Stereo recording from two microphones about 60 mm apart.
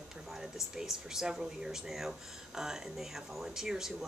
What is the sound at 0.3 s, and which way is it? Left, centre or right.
Speech, centre.